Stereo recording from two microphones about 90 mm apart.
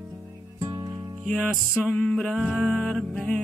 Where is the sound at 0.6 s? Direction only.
40° right (ahead or behind).